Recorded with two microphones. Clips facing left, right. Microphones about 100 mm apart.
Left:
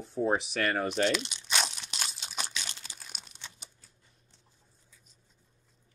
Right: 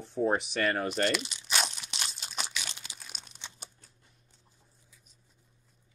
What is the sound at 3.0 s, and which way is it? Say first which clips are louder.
Crumpling: even; 5° left (ahead or behind).